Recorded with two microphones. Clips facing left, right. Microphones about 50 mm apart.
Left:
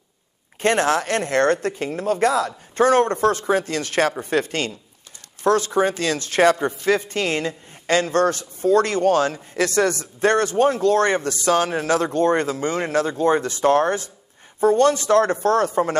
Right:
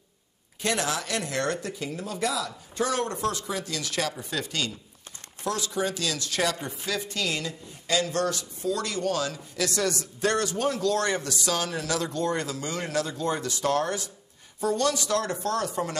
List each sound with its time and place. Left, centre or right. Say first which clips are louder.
0.6 s a woman's voice: left 9 dB; left